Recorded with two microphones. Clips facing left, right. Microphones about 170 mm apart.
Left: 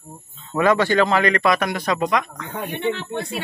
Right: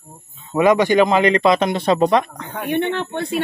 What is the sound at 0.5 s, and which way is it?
A man's voice, 15° right (ahead or behind).